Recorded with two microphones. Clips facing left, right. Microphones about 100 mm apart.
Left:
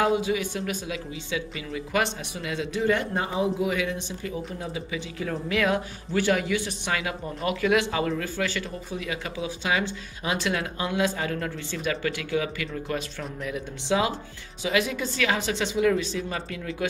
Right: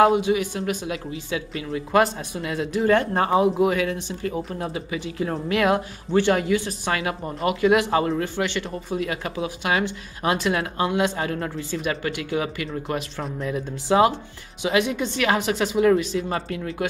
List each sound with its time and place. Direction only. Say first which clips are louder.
0.0 s speech: right 6 dB; 25° right (ahead or behind)
2.8 s speech: right 6 dB; 50° right (ahead or behind)
3.7 s speech: right 4 dB; 45° right (ahead or behind)